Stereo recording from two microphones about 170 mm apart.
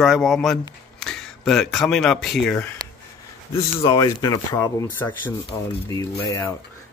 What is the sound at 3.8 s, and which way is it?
Speech, 30° left (ahead or behind).